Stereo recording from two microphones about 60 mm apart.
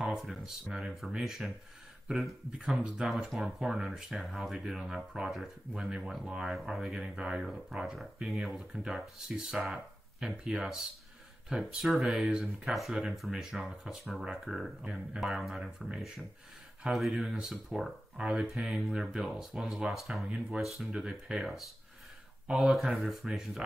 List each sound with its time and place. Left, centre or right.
0.0 s speech: centre
12.3 s speech: centre
12.6 s speech: centre
18.1 s speech: centre